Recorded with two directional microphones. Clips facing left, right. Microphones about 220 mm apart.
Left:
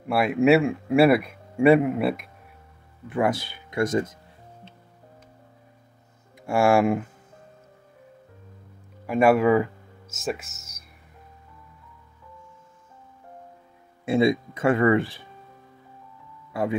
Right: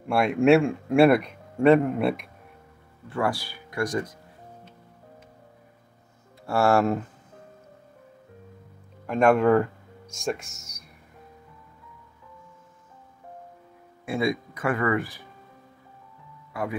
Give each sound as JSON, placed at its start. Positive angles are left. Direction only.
{"t": 0.1, "sound": "a man's voice", "side_deg": 5}
{"t": 3.1, "sound": "speech", "side_deg": 20}
{"t": 6.4, "sound": "speech", "side_deg": 10}
{"t": 9.0, "sound": "speech", "side_deg": 5}
{"t": 14.0, "sound": "speech", "side_deg": 25}
{"t": 16.5, "sound": "speech", "side_deg": 25}